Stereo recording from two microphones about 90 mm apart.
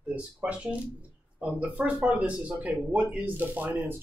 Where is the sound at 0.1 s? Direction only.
15° right (ahead or behind).